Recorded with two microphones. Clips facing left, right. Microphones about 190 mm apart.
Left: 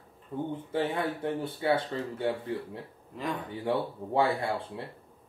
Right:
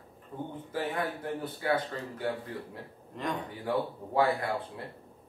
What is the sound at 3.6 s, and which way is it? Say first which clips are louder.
Speech: left 2 dB; 25° left (ahead or behind).